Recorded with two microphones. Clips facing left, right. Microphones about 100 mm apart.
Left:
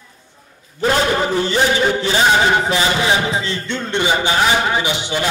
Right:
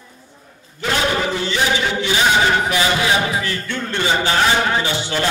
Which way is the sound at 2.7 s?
25° left (ahead or behind).